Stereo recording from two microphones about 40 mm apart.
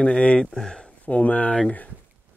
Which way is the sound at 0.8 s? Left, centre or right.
Left.